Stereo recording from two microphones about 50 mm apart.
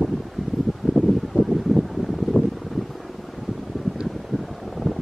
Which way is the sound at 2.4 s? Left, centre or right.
Left.